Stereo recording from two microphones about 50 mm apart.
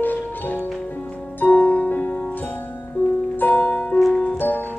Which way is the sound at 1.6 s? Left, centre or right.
Left.